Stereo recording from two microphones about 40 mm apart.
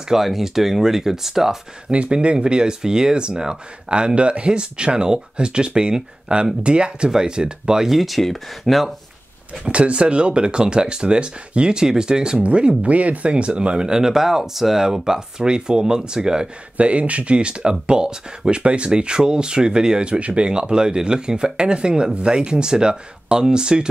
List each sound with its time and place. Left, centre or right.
0.1 s speech: centre
1.9 s speech: right
7.9 s speech: centre
9.7 s speech: right
16.7 s speech: right